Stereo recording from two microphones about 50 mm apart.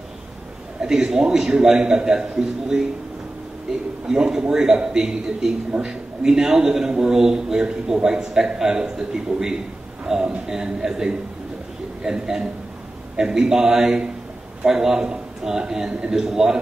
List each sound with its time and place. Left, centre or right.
0.7 s a man's voice: centre
4.1 s a man's voice: centre
5.7 s speech: right
6.2 s a man's voice: centre